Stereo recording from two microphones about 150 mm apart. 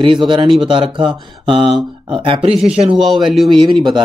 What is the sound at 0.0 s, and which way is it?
Speech, 30° right (ahead or behind).